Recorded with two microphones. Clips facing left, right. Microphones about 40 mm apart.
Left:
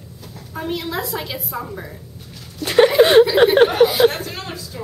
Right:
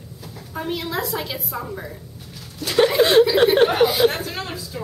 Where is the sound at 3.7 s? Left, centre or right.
Centre.